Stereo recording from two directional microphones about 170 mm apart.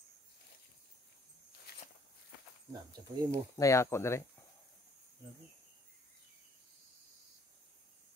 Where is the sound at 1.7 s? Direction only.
65° left (ahead or behind).